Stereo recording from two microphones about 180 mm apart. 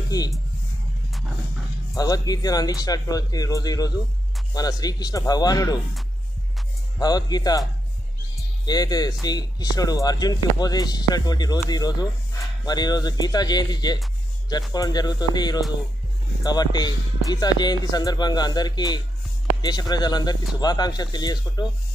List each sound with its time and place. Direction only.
0.1 s speech: 20° left (ahead or behind)
2.0 s speech: 20° left (ahead or behind)
7.0 s speech: 20° left (ahead or behind)
8.6 s speech: 20° left (ahead or behind)